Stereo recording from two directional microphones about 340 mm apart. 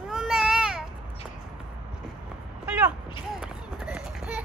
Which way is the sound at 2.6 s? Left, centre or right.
Centre.